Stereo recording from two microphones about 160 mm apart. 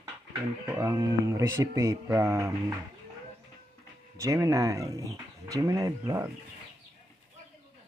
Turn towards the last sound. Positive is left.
turn(degrees=-20)  # may be behind; listen again after turning